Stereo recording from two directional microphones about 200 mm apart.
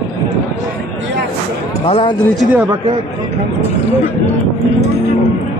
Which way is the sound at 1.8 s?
25° left (ahead or behind).